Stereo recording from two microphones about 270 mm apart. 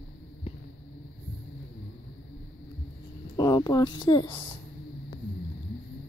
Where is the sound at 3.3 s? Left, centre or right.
Centre.